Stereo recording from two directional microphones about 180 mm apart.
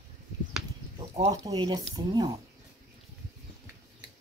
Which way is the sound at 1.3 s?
20° right (ahead or behind).